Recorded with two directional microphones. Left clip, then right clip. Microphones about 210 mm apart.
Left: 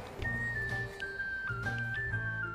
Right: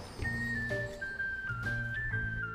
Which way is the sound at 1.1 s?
Centre (ahead or behind).